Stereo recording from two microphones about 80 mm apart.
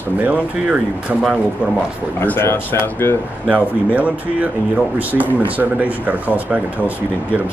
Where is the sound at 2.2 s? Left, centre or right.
Left.